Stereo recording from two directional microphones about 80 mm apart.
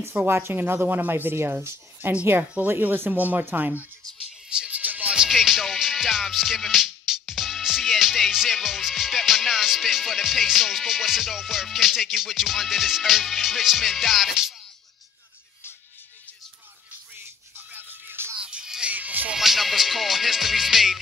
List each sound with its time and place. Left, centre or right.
0.1 s speech: right
4.5 s music: centre
17.1 s music: right
18.4 s music: centre
19.3 s music: centre